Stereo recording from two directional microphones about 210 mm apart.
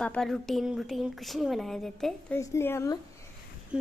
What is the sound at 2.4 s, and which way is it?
Speech, 10° left (ahead or behind).